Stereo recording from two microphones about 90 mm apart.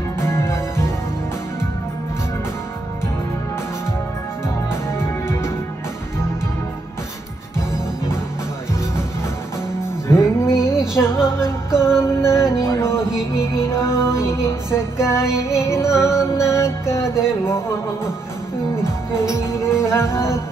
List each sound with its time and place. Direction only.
0.2 s music: 30° left (ahead or behind)
10.0 s music: 30° left (ahead or behind)
19.3 s music: 30° left (ahead or behind)